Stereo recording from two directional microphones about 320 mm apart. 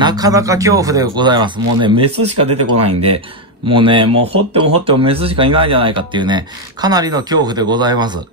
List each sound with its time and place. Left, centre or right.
0.0 s speech: centre
2.0 s speech: right
3.6 s speech: centre